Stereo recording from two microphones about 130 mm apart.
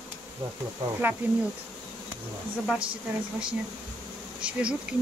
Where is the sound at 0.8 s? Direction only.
40° right (ahead or behind).